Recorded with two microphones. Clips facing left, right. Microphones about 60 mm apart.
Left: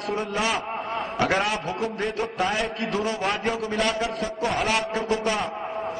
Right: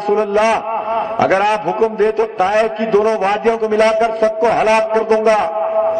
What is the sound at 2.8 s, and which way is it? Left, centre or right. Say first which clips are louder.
A man's voice: right 12 dB; right.